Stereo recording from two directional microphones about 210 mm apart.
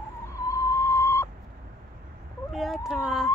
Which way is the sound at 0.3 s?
15° left (ahead or behind).